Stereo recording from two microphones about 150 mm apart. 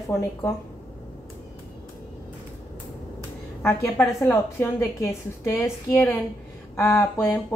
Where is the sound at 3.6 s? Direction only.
15° left (ahead or behind).